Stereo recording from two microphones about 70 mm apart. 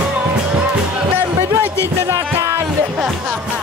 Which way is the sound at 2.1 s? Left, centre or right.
Right.